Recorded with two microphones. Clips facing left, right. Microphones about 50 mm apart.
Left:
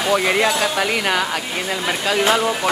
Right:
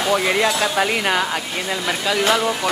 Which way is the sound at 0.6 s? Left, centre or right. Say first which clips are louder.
Even; centre.